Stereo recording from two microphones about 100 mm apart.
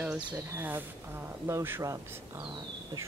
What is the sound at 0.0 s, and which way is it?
Speech, 15° right (ahead or behind).